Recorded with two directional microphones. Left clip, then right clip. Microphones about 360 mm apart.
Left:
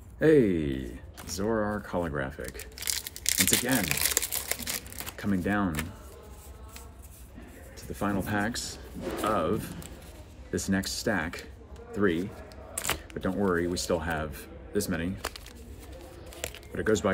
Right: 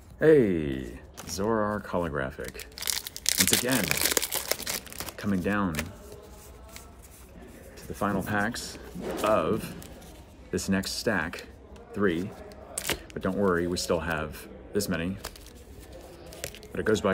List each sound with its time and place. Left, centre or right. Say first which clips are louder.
0.2 s speech: right 2 dB; centre
3.8 s crumpling: right 2 dB; centre
8.3 s speech: right 2 dB; centre
12.7 s camera: even; centre
13.1 s speech: right 3 dB; centre
16.3 s squish: left 1 dB; centre
16.7 s speech: right 1 dB; centre